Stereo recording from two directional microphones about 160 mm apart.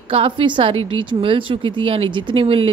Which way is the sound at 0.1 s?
35° right (ahead or behind).